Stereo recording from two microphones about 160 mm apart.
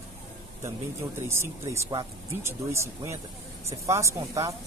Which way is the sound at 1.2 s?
15° right (ahead or behind).